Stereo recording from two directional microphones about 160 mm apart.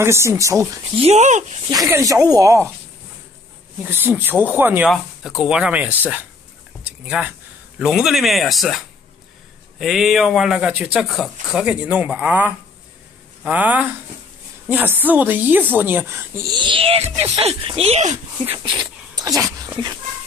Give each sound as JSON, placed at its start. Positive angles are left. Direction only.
{"t": 0.0, "sound": "speech", "side_deg": -15}
{"t": 0.9, "sound": "speech", "side_deg": -40}
{"t": 1.9, "sound": "speech", "side_deg": -20}
{"t": 3.8, "sound": "speech", "side_deg": -10}
{"t": 6.8, "sound": "a sound", "side_deg": -5}
{"t": 7.8, "sound": "speech", "side_deg": -5}
{"t": 16.5, "sound": "speech", "side_deg": -30}
{"t": 19.1, "sound": "dog", "side_deg": -20}